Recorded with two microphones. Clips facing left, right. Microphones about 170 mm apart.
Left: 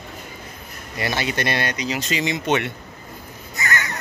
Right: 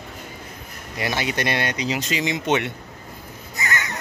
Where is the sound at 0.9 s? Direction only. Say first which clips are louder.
Even; 15° right (ahead or behind).